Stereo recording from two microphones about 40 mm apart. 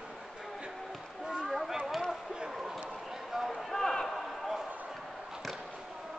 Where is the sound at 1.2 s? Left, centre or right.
Centre.